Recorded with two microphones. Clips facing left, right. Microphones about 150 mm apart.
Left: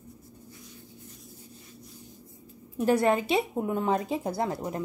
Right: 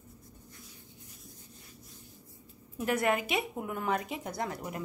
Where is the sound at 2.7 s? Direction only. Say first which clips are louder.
Left 6 dB; 30° left (ahead or behind).